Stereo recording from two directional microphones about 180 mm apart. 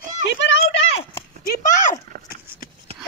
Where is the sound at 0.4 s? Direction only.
90° left.